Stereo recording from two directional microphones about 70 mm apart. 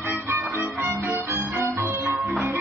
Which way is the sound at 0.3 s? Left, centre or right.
Right.